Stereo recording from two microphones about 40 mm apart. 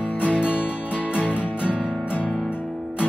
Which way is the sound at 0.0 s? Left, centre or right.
Left.